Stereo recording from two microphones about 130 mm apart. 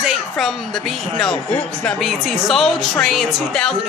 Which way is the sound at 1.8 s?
Centre (ahead or behind).